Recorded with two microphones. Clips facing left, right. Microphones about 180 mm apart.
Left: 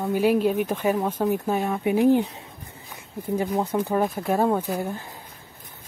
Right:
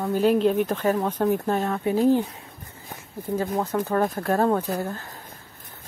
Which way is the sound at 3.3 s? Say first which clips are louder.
Left 1 dB; 15° left (ahead or behind).